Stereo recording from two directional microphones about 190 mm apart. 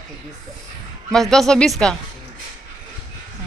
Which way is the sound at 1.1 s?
Centre (ahead or behind).